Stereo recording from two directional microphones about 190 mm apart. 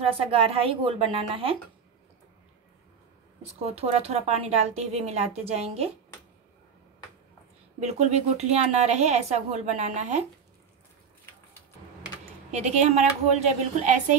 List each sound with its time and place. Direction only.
0.2 s speech: 30° right (ahead or behind)
3.4 s speech: 30° right (ahead or behind)
7.8 s speech: 35° right (ahead or behind)
12.4 s speech: 35° right (ahead or behind)